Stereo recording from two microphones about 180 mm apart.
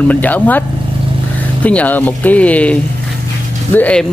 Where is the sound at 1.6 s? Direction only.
10° left (ahead or behind).